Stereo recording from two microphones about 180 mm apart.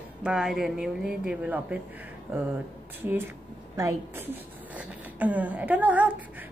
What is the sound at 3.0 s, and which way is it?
A woman's voice, 10° right (ahead or behind).